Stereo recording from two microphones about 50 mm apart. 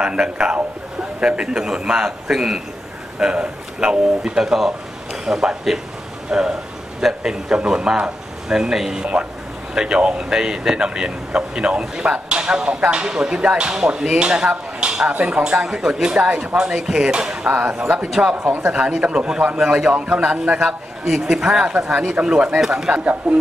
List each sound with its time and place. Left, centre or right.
0.0 s a man's voice: centre
17.5 s a man's voice: right
20.6 s speech: centre